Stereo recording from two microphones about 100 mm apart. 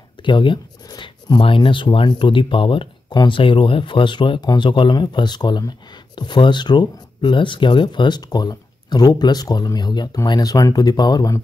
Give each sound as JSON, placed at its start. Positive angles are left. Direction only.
{"t": 0.2, "sound": "speech", "side_deg": 55}